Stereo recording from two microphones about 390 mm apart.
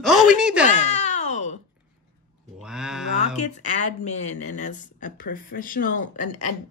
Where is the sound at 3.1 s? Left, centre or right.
Centre.